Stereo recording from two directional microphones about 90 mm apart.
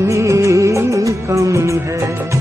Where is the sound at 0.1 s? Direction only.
35° right (ahead or behind).